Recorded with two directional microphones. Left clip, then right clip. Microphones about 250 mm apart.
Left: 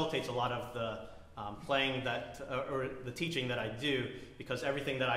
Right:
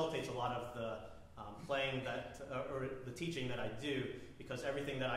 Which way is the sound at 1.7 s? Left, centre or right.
Left.